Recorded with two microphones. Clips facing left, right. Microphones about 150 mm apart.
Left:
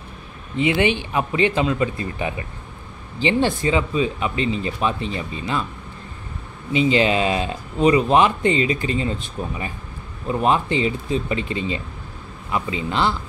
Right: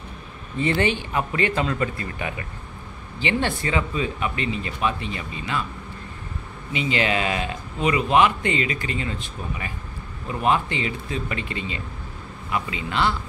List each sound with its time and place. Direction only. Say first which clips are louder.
0.6 s speech: left 3 dB; 15° left (ahead or behind)
6.7 s speech: left 6 dB; 30° left (ahead or behind)
10.2 s speech: left 3 dB; 30° left (ahead or behind)